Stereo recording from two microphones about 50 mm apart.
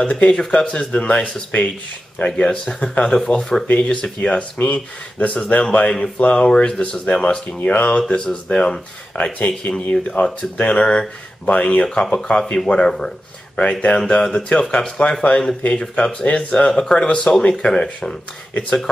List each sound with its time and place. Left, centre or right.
0.0 s speech: left
8.1 s speech: centre
9.1 s speech: left
11.8 s speech: centre
12.8 s speech: centre
13.6 s speech: left